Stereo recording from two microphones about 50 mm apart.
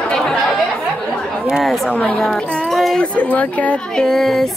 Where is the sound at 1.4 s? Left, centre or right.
Centre.